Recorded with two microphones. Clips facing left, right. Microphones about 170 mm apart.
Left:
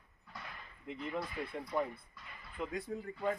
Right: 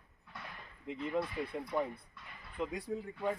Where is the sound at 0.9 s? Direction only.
15° right (ahead or behind).